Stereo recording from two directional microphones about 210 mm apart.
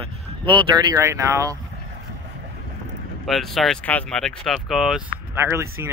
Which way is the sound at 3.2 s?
Centre (ahead or behind).